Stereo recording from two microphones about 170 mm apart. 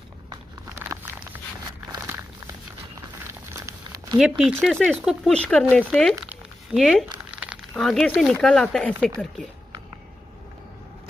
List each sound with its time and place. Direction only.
0.7 s walk: 10° right (ahead or behind)
1.9 s a sound: 15° right (ahead or behind)
4.2 s speech: 10° right (ahead or behind)
4.6 s speech: 5° left (ahead or behind)
6.2 s a sound: centre (ahead or behind)
7.7 s speech: centre (ahead or behind)